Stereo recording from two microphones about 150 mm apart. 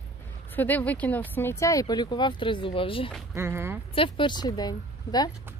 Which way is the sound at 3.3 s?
15° right (ahead or behind).